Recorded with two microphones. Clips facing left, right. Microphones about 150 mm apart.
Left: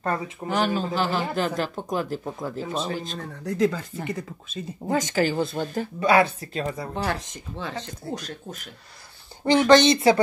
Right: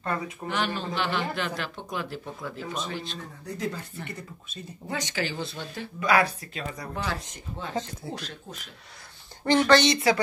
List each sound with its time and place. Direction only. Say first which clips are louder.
0.0 s speech: left 3 dB; 40° left (ahead or behind)
3.4 s speech: left 10 dB; 90° left
4.8 s speech: left 8 dB; 45° left (ahead or behind)
5.9 s speech: left 4 dB; 25° left (ahead or behind)
8.1 s speech: left 4 dB; 45° left (ahead or behind)
9.4 s speech: left 4 dB; 15° left (ahead or behind)